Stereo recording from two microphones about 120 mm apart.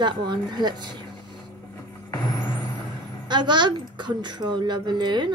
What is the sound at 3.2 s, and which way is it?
A woman's voice, 40° right (ahead or behind).